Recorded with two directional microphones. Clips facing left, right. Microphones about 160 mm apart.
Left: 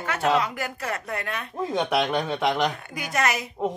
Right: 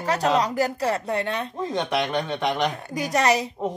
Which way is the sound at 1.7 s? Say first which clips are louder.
Left 1 dB; 10° left (ahead or behind).